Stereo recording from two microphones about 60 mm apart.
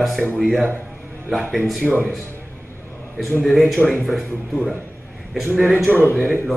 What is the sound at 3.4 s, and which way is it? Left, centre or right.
A man's voice, centre.